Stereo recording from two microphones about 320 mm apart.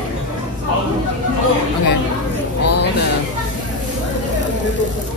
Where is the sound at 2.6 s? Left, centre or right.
Left.